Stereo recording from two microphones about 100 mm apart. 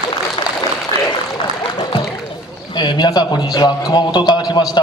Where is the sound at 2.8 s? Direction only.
45° left (ahead or behind).